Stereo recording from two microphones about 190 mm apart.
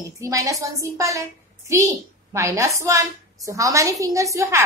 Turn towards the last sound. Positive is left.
turn(degrees=-15)  # may be behind; listen again after turning